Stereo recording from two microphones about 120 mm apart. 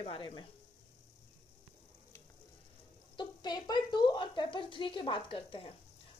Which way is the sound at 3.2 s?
35° left (ahead or behind).